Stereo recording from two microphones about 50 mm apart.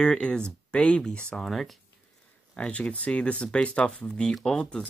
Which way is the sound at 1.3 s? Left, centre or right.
Centre.